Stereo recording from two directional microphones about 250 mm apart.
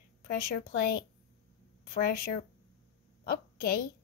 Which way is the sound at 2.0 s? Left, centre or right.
Left.